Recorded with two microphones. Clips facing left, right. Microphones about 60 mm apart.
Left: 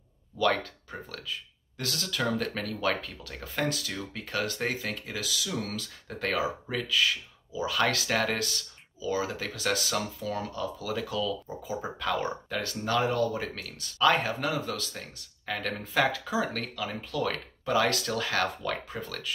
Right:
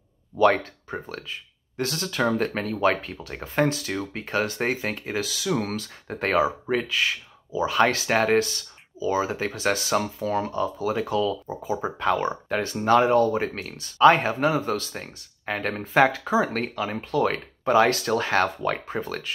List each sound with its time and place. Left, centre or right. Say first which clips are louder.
0.4 s speech: right 7 dB; right